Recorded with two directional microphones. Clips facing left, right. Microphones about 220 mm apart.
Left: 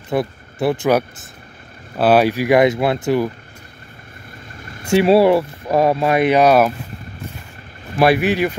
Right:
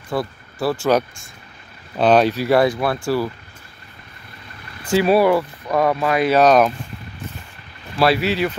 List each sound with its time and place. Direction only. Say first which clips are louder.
0.1 s speech: left 4 dB; 20° left (ahead or behind)
4.6 s vehicle: left 3 dB; 45° left (ahead or behind)
4.9 s speech: left 3 dB; 25° left (ahead or behind); by 6.7 s 10° left (ahead or behind)
8.3 s speech: left 3 dB; 15° left (ahead or behind)